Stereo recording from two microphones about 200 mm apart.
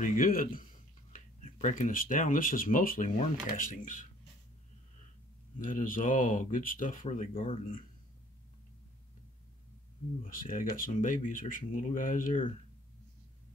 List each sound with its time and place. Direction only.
0.0 s speech: 45° left (ahead or behind)
5.6 s speech: 40° left (ahead or behind)
10.2 s speech: 45° left (ahead or behind)